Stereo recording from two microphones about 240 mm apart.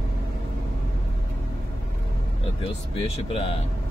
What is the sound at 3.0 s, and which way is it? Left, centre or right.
Speech, left.